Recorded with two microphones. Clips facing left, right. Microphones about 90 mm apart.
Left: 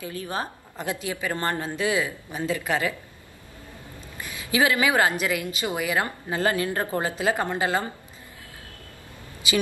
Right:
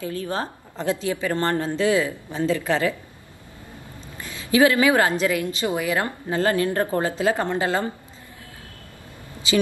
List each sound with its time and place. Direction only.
0.0 s a woman's voice: 20° left (ahead or behind)
4.2 s a woman's voice: 15° left (ahead or behind)